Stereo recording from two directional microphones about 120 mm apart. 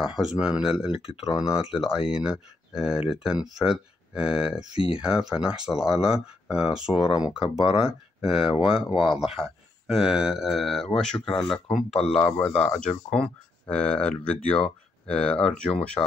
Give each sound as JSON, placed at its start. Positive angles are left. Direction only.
{"t": 0.0, "sound": "speech", "side_deg": -5}
{"t": 7.3, "sound": "speech", "side_deg": 45}
{"t": 7.7, "sound": "speech", "side_deg": -5}